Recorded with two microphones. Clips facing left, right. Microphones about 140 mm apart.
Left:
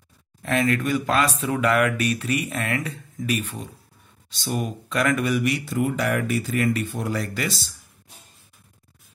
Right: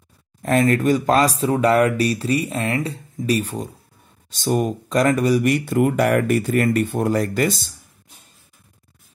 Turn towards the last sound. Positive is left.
turn(degrees=-50)  # may be behind; listen again after turning